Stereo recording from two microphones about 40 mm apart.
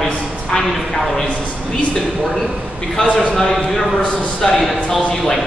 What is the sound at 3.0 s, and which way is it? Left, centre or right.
Speech, left.